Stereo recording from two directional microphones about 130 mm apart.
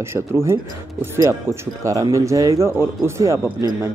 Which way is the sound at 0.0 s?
20° right (ahead or behind).